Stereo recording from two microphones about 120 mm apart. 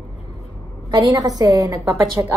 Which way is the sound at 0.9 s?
35° right (ahead or behind).